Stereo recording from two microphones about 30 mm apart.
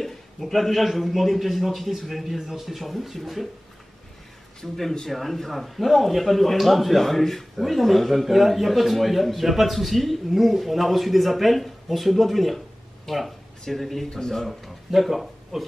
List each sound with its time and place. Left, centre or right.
0.0 s a sound: centre
0.9 s a man's voice: centre
4.6 s a man's voice: centre
5.0 s a man's voice: centre
13.1 s a man's voice: centre
14.1 s speech: centre
14.4 s a man's voice: centre